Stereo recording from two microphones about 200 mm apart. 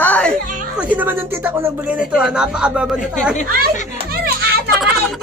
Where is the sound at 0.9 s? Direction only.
10° right (ahead or behind).